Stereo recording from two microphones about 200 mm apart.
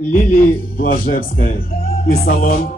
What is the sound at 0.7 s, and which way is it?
Speech, 45° left (ahead or behind).